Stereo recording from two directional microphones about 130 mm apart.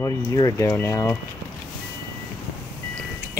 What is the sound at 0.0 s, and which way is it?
Speech, 25° left (ahead or behind).